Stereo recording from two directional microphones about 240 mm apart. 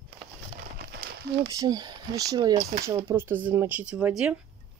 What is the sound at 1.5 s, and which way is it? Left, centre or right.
Speech, centre.